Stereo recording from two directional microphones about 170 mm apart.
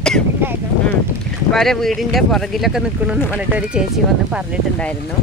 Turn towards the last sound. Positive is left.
turn(degrees=-5)  # may be behind; listen again after turning